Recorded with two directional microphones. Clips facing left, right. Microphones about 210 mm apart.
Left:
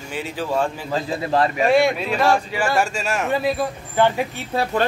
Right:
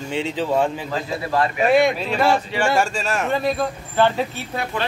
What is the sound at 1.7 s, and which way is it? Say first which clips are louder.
A man's voice: right 2 dB; centre (ahead or behind).